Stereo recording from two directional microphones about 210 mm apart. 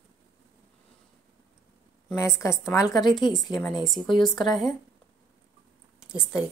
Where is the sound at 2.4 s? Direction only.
15° left (ahead or behind).